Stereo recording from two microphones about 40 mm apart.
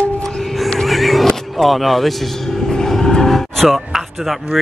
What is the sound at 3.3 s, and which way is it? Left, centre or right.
Music, centre.